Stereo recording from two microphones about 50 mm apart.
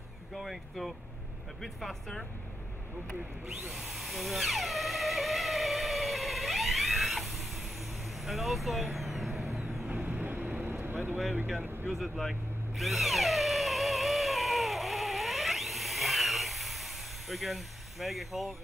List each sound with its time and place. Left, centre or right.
0.4 s speech: centre
3.7 s a sound: centre
8.2 s vehicle: centre
9.8 s vehicle: right
11.9 s cat: centre